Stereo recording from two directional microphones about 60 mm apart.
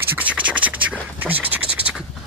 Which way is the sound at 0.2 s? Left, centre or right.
Right.